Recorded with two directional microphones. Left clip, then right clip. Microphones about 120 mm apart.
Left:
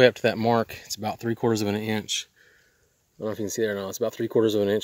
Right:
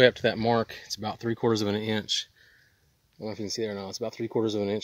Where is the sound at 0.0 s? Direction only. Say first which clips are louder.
Left 2 dB; 20° left (ahead or behind); by 2.2 s 5° left (ahead or behind).